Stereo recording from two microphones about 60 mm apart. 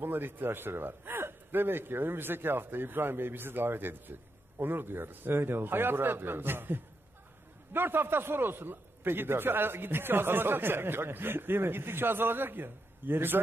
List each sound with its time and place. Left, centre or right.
0.0 s a man's voice: right